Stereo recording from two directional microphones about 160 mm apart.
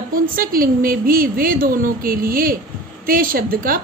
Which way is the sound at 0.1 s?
65° right (ahead or behind).